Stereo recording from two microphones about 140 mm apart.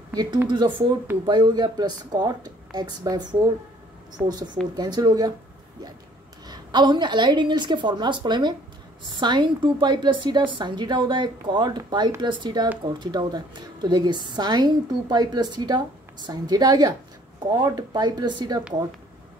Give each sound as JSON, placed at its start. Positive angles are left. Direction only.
{"t": 0.1, "sound": "a woman's voice", "side_deg": -30}
{"t": 6.4, "sound": "a woman's voice", "side_deg": -30}